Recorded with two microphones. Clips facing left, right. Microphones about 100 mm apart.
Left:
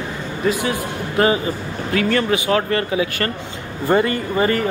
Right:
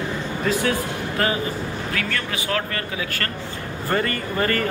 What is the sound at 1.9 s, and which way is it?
Speech, 30° left (ahead or behind).